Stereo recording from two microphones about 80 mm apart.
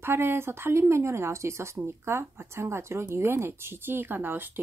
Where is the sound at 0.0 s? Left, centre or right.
Right.